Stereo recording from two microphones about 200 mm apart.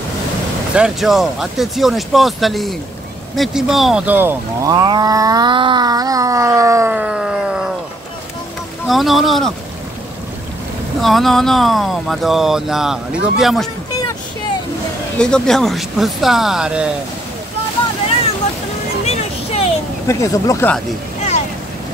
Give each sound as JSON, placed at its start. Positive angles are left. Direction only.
{"t": 0.7, "sound": "speech", "side_deg": -5}
{"t": 8.8, "sound": "speech", "side_deg": 0}
{"t": 11.0, "sound": "speech", "side_deg": 0}
{"t": 15.1, "sound": "speech", "side_deg": 5}
{"t": 19.0, "sound": "a sound", "side_deg": 30}
{"t": 20.1, "sound": "speech", "side_deg": 15}